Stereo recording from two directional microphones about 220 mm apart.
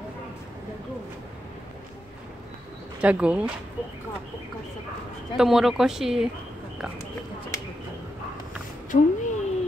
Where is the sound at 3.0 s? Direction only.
5° right (ahead or behind).